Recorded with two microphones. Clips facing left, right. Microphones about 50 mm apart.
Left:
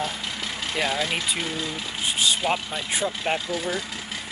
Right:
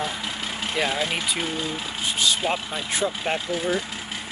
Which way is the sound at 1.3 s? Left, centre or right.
Right.